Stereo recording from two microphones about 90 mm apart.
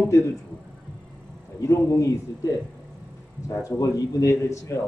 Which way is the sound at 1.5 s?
35° left (ahead or behind).